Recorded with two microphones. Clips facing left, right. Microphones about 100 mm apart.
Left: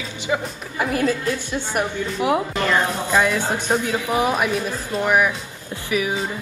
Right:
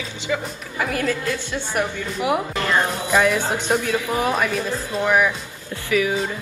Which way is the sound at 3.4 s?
20° right (ahead or behind).